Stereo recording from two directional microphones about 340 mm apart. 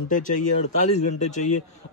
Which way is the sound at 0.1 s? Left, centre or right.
Left.